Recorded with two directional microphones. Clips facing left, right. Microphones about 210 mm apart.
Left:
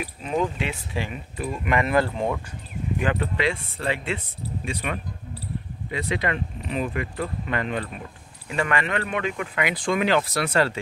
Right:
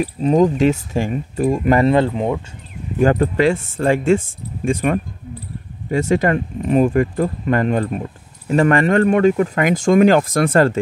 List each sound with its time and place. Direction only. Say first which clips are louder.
0.0 s speech: right 11 dB; 40° right (ahead or behind)
2.0 s speech: right 6 dB; 20° right (ahead or behind)
3.0 s speech: right 11 dB; 45° right (ahead or behind)